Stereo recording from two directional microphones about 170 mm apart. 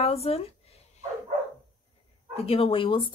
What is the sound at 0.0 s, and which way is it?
Speech, 35° left (ahead or behind).